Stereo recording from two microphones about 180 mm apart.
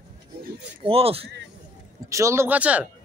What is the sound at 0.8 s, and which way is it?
Speech, 35° right (ahead or behind).